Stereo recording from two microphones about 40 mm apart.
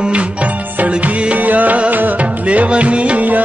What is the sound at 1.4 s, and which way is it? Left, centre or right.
Music, right.